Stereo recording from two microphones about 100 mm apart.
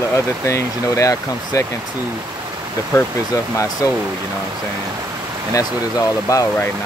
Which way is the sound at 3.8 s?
30° left (ahead or behind).